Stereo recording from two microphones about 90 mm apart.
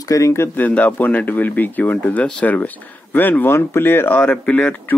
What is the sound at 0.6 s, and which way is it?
Speech, 15° left (ahead or behind).